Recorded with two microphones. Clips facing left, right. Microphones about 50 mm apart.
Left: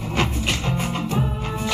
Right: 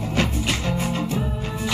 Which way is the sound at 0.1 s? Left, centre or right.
Left.